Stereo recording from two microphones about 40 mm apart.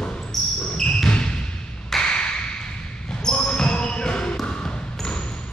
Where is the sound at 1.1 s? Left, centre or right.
Left.